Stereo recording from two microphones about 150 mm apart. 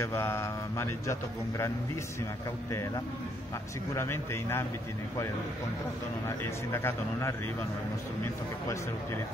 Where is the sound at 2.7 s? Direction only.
20° left (ahead or behind).